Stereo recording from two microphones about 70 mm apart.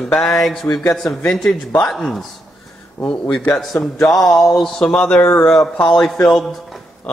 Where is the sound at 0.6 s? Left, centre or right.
Left.